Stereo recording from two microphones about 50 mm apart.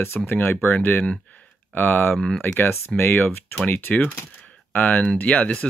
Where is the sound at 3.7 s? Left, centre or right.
Left.